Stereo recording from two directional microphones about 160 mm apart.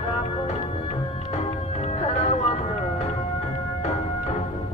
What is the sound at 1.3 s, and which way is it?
Music, 45° left (ahead or behind).